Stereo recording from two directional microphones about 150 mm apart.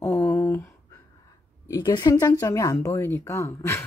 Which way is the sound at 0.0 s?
20° left (ahead or behind).